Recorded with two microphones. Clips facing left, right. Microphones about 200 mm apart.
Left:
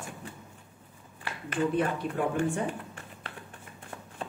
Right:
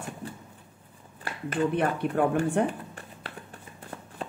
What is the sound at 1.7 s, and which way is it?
Speech, 65° right (ahead or behind).